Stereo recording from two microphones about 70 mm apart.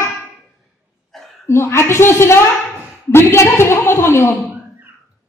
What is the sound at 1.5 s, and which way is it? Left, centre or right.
A woman's voice, left.